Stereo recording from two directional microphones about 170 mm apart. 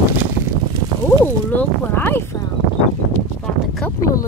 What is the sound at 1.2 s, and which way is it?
Speech, 10° left (ahead or behind).